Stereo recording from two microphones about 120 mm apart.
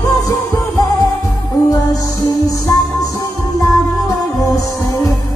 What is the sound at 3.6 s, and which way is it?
Music, 30° left (ahead or behind).